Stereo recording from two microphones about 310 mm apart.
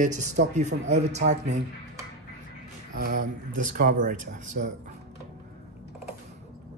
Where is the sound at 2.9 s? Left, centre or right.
Right.